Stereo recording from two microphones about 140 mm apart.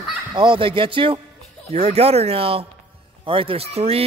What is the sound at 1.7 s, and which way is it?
Speech, 50° right (ahead or behind).